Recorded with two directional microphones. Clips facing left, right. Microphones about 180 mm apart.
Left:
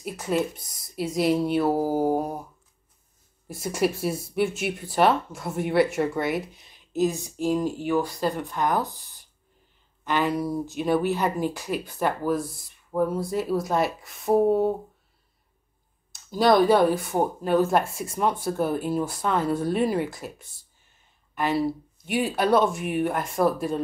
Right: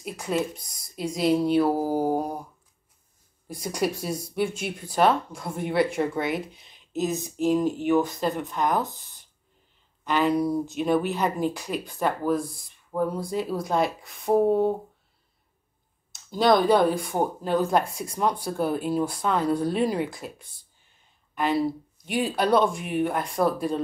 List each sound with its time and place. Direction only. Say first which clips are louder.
0.0 s speech: left 1 dB; centre (ahead or behind)
3.4 s speech: left 2 dB; 5° left (ahead or behind)
7.6 s speech: right 2 dB; 20° right (ahead or behind)
8.1 s speech: even; centre (ahead or behind)
16.3 s speech: left 1 dB; centre (ahead or behind)
21.5 s speech: even; 5° left (ahead or behind)